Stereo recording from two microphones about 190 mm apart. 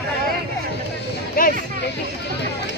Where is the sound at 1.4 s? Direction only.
50° left (ahead or behind).